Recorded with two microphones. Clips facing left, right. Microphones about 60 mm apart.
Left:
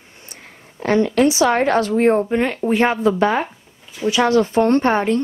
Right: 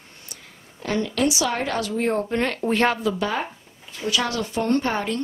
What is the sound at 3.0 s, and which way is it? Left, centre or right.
Speech, left.